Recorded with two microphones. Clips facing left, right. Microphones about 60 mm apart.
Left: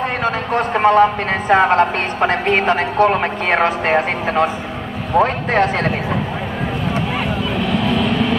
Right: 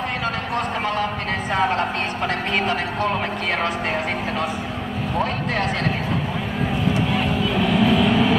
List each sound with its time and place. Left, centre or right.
0.2 s a sound: left
1.5 s speech: left
7.5 s vehicle: centre